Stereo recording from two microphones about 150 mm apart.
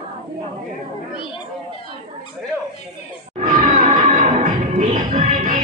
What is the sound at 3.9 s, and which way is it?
Music, 50° right (ahead or behind).